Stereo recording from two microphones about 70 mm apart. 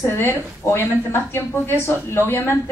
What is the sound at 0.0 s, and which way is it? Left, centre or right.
A woman's voice, left.